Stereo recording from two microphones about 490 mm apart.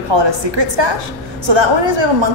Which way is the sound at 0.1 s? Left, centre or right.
Right.